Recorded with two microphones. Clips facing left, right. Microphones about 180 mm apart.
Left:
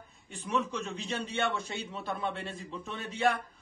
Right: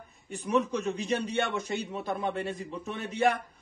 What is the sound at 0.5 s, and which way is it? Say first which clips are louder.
Speech: right 5 dB; 40° right (ahead or behind).